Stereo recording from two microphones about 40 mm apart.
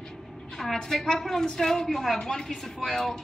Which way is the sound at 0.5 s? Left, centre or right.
Centre.